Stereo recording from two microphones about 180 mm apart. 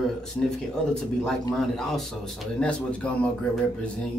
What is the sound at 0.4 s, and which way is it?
Speech, 10° left (ahead or behind).